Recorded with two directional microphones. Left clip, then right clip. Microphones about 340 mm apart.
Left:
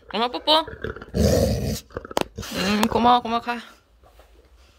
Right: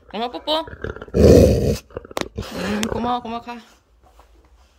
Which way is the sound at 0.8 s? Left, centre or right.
Centre.